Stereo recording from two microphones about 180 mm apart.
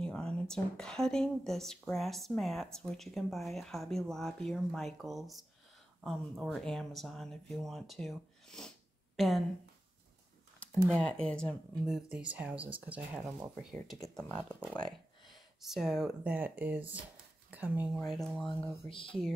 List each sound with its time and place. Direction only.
0.0 s speech: 5° left (ahead or behind)
11.0 s speech: 5° left (ahead or behind)
17.9 s speech: centre (ahead or behind)
18.9 s speech: 30° left (ahead or behind)